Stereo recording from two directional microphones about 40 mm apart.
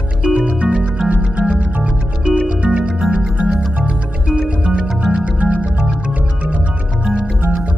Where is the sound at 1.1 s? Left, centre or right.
Right; by 3.3 s centre.